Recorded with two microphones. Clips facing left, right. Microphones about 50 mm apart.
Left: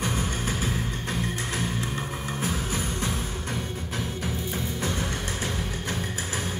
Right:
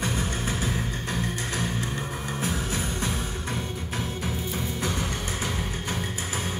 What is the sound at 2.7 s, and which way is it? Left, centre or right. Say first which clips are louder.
Music: even; left.